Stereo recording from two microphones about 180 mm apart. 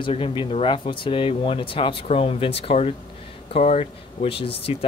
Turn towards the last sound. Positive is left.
turn(degrees=30)  # may be behind; listen again after turning